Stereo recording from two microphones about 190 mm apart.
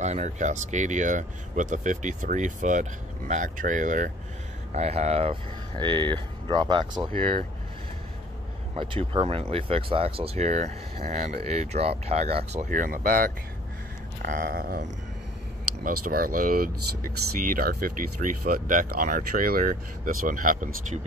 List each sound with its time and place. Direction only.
0.0 s speech: 40° right (ahead or behind)
8.7 s speech: 25° right (ahead or behind)
12.6 s speech: 45° right (ahead or behind)